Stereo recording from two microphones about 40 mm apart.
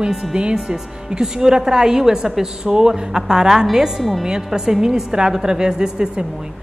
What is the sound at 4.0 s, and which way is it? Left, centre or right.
Speech, centre.